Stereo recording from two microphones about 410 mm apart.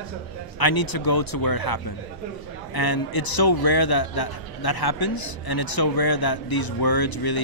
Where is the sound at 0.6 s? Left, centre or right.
Left.